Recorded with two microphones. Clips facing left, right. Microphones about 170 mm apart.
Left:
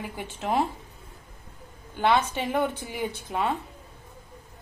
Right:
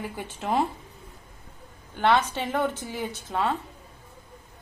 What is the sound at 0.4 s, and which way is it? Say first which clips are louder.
Speech: even; 10° left (ahead or behind).